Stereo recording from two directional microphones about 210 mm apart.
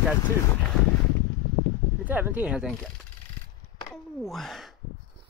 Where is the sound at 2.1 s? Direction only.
10° right (ahead or behind).